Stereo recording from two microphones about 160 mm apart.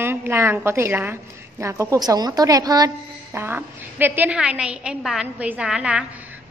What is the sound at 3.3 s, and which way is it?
A woman's voice, 15° right (ahead or behind).